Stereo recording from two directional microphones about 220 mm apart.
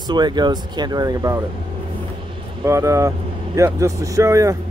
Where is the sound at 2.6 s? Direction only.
15° right (ahead or behind).